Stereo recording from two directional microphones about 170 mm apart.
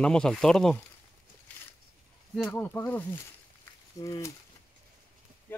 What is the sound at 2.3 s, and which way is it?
Speech, 5° left (ahead or behind).